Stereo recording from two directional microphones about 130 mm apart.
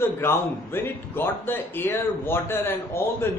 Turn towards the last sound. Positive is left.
turn(degrees=20)  # may be behind; listen again after turning